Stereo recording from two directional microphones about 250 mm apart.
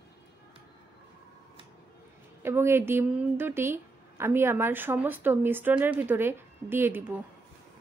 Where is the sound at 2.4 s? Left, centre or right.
Centre.